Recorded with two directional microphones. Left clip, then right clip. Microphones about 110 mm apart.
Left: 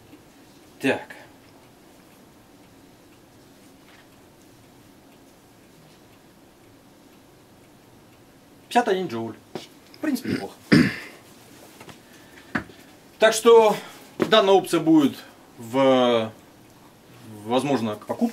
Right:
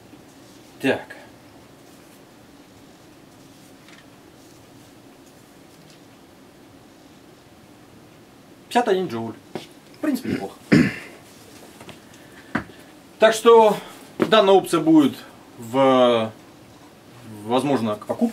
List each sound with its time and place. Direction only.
0.7 s speech: centre (ahead or behind)
8.6 s a sound: centre (ahead or behind)
10.2 s throat clearing: 25° left (ahead or behind)
13.2 s speech: centre (ahead or behind)
17.5 s speech: centre (ahead or behind)